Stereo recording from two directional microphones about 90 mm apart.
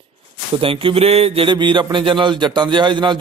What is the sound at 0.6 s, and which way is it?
A man's voice, 85° right.